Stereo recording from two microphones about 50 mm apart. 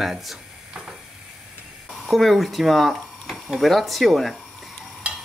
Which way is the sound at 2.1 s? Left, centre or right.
Centre.